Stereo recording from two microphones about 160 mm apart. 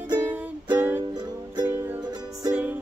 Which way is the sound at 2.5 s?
10° right (ahead or behind).